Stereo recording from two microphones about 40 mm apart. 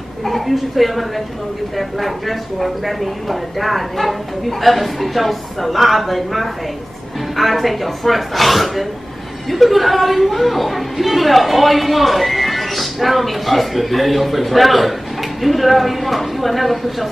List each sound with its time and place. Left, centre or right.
0.2 s a woman's voice: centre